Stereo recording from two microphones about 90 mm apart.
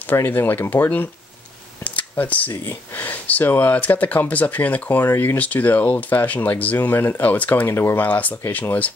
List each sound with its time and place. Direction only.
0.1 s speech: 20° left (ahead or behind)